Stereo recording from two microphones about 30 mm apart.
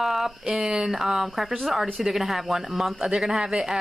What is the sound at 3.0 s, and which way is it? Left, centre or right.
Speech, right.